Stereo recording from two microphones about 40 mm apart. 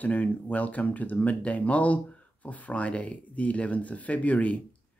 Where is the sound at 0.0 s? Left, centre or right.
Left.